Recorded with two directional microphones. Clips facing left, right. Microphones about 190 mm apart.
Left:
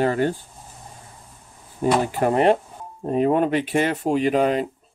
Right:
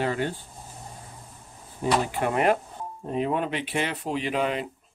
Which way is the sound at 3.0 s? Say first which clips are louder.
Left 8 dB; 45° left (ahead or behind).